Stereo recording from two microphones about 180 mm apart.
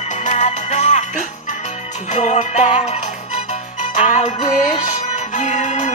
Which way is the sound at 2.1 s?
40° left (ahead or behind).